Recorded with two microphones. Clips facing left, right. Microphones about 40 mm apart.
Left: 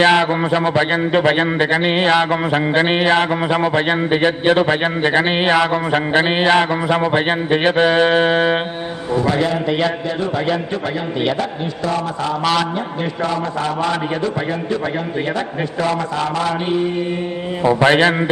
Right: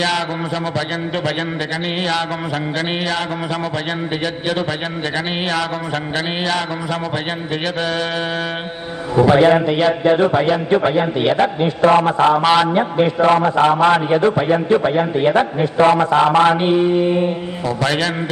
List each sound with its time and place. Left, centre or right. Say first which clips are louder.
0.7 s a man's voice: left 6 dB; left
9.3 s a man's voice: right 9 dB; right
9.7 s a sound: right 2 dB; centre
10.0 s a man's voice: right 8 dB; right
11.3 s a man's voice: right 6 dB; right
17.6 s a man's voice: left 6 dB; left